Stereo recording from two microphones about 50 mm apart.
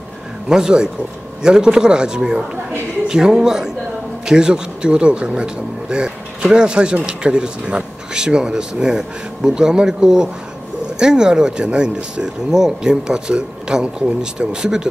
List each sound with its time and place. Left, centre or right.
0.5 s speech: centre